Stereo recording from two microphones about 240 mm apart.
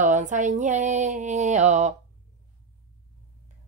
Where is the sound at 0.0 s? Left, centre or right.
Right.